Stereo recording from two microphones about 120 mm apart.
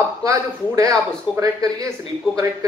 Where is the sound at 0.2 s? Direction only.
30° right (ahead or behind).